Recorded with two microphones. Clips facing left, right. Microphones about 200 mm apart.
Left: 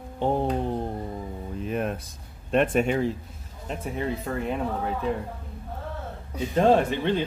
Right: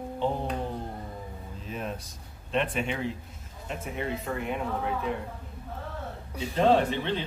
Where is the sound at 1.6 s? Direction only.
60° left (ahead or behind).